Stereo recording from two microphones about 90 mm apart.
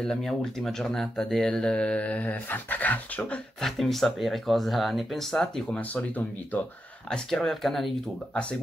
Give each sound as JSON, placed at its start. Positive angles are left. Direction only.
{"t": 0.0, "sound": "speech", "side_deg": 5}
{"t": 3.6, "sound": "speech", "side_deg": 0}
{"t": 5.8, "sound": "speech", "side_deg": 20}
{"t": 7.1, "sound": "speech", "side_deg": 5}